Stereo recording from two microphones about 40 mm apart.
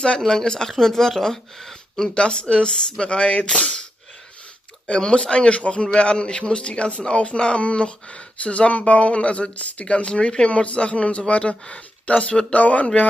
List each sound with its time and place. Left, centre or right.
0.2 s speech: centre
2.1 s speech: left
4.8 s speech: left
12.5 s speech: left